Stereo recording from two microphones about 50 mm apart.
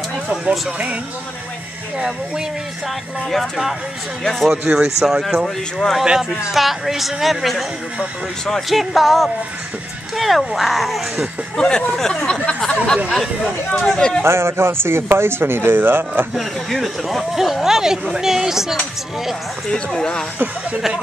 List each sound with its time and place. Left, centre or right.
0.3 s speech: right
3.3 s speech: centre
4.5 s a woman's voice: centre
5.2 s speech: centre
6.0 s a woman's voice: centre
6.5 s speech: centre
8.6 s speech: centre
11.5 s speech: centre
13.1 s speech: centre
13.9 s speech: centre
14.2 s speech: right
16.3 s a woman's voice: centre
19.7 s speech: centre